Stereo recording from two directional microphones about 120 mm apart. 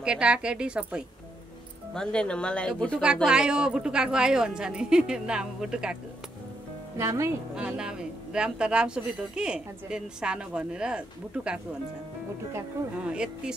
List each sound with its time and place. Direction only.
0.0 s speech: 10° right (ahead or behind)
2.0 s speech: 10° left (ahead or behind)
3.3 s speech: 5° right (ahead or behind)
7.0 s speech: 25° right (ahead or behind)
7.5 s speech: 10° right (ahead or behind)
13.0 s speech: 10° right (ahead or behind)